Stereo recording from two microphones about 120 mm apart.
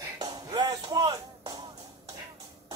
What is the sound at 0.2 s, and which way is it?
Music, 35° right (ahead or behind).